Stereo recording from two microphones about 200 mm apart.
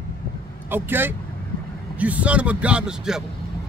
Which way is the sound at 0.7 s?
10° right (ahead or behind).